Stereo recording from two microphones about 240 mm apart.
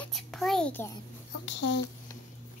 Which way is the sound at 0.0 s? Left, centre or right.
Centre.